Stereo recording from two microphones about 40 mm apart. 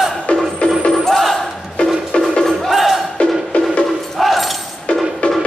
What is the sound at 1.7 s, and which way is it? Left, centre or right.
Music, left.